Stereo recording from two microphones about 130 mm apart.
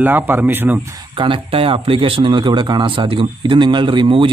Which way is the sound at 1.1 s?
40° right (ahead or behind).